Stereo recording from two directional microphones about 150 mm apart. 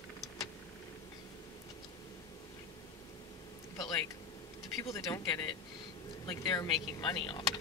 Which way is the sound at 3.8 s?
25° left (ahead or behind).